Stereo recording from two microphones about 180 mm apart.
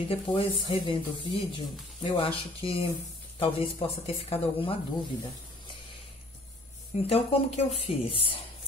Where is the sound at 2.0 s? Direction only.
30° left (ahead or behind).